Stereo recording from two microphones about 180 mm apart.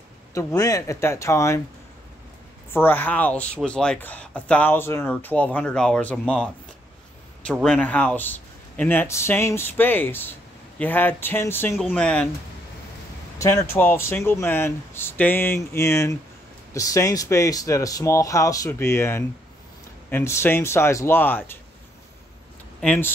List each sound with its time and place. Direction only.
0.3 s speech: 15° left (ahead or behind)
2.7 s speech: 10° left (ahead or behind)
7.6 s speech: 5° left (ahead or behind)
13.4 s speech: 15° left (ahead or behind)
22.8 s speech: 10° left (ahead or behind)